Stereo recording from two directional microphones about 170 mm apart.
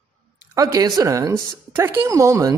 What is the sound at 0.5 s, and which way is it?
A woman's voice, 20° right (ahead or behind).